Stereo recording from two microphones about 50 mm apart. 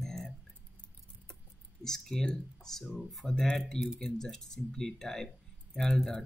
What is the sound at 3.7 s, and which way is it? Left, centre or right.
Speech, centre.